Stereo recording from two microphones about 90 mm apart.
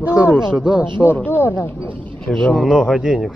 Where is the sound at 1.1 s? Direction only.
20° left (ahead or behind).